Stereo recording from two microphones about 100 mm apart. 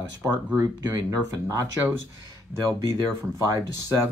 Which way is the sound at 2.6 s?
40° right (ahead or behind).